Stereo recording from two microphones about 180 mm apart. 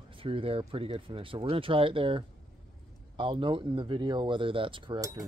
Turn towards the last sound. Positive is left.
turn(degrees=-25)  # may be behind; listen again after turning